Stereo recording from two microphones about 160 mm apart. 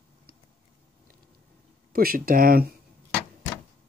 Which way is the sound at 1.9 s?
65° right (ahead or behind).